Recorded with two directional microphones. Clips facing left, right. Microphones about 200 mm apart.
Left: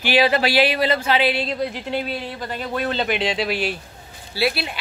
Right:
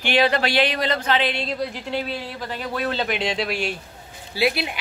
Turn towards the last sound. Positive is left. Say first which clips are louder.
# even
turn(degrees=-15)  # may be behind; listen again after turning